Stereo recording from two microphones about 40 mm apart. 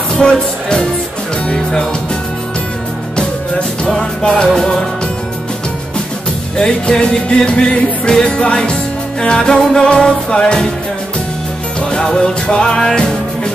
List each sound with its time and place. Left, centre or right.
0.1 s music: left
3.8 s music: centre
6.5 s music: left
11.9 s music: centre